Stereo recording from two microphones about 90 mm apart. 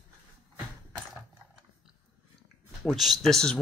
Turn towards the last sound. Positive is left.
turn(degrees=5)  # may be behind; listen again after turning